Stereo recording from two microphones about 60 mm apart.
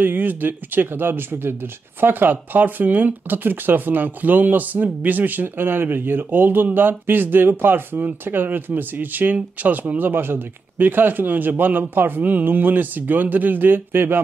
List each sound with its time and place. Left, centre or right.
0.0 s speech: right